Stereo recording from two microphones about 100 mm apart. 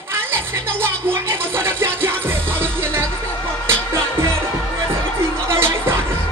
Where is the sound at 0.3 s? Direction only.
25° right (ahead or behind).